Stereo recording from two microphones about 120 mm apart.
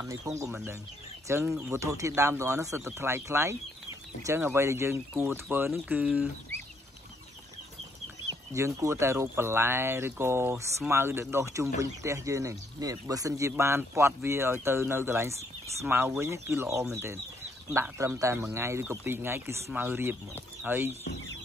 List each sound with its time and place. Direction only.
0.0 s speech: 25° right (ahead or behind)
8.5 s speech: 25° right (ahead or behind)
17.9 s speech: 25° right (ahead or behind)